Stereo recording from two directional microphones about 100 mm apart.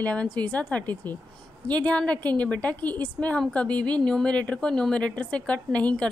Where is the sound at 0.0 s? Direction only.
15° left (ahead or behind).